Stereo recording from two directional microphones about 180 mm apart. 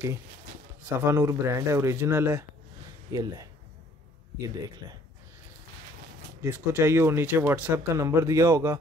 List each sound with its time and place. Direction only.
1.0 s speech: 15° right (ahead or behind)
6.4 s speech: 10° right (ahead or behind)